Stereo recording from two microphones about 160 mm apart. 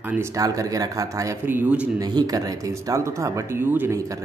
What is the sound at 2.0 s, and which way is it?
Speech, 25° right (ahead or behind).